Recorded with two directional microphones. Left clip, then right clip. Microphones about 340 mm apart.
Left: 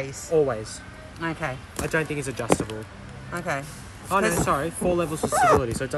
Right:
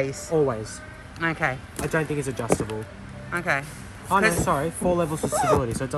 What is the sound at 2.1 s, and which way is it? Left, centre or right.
A man's voice, centre.